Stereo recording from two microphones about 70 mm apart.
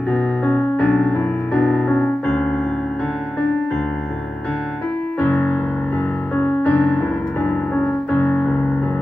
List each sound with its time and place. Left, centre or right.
0.1 s music: centre
6.3 s music: left